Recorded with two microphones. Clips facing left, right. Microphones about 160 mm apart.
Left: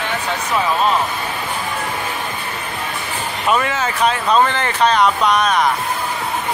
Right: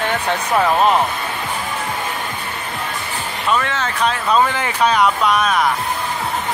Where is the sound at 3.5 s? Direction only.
10° left (ahead or behind).